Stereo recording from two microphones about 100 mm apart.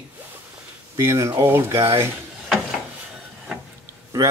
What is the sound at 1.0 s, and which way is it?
Speech, 25° right (ahead or behind).